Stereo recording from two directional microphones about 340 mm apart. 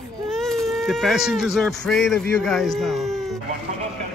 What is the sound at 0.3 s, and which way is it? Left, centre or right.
Speech, centre.